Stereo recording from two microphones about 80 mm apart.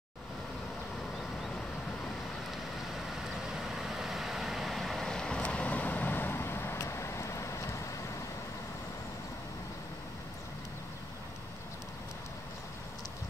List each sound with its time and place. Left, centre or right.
3.6 s vehicle: centre; by 7.8 s left